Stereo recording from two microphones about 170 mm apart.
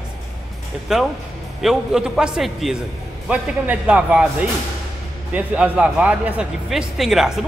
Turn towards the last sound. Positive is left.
turn(degrees=0)  # may be behind; listen again after turning